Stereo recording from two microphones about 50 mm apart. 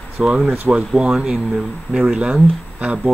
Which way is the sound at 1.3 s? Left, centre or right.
Centre.